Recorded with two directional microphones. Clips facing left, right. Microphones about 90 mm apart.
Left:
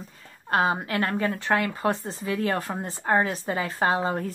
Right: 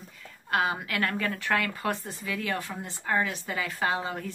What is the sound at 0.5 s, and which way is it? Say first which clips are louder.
Speech: left 4 dB; 30° left (ahead or behind).